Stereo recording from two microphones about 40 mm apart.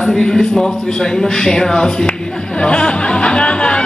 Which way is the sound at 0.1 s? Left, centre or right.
Centre.